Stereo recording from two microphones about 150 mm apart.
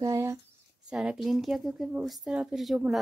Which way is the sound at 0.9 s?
5° right (ahead or behind).